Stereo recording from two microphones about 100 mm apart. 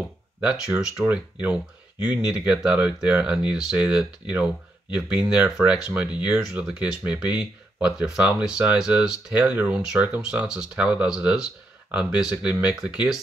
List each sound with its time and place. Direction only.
0.4 s speech: 10° right (ahead or behind)